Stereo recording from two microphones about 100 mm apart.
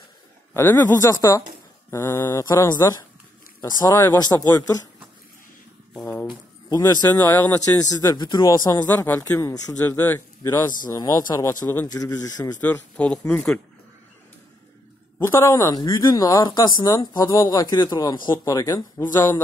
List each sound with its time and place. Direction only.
0.6 s speech: 20° left (ahead or behind)
2.4 s speech: 40° left (ahead or behind)
3.6 s speech: 45° left (ahead or behind)
6.7 s speech: 40° left (ahead or behind)
7.1 s speech: 20° left (ahead or behind)
7.7 s speech: 40° left (ahead or behind)
8.9 s speech: 20° left (ahead or behind)
11.0 s speech: 40° left (ahead or behind)
12.6 s speech: 10° left (ahead or behind)
15.1 s speech: 25° left (ahead or behind)
15.5 s speech: 40° left (ahead or behind)
18.3 s speech: 35° left (ahead or behind)
19.1 s speech: 20° left (ahead or behind)